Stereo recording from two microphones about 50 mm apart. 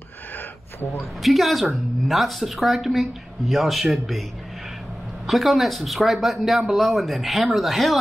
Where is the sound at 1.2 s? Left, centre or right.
Centre.